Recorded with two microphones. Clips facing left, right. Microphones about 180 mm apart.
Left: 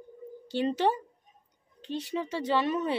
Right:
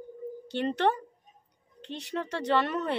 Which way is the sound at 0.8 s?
10° left (ahead or behind).